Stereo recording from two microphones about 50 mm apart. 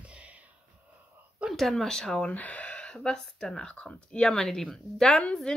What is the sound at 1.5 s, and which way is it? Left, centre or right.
Speech, centre.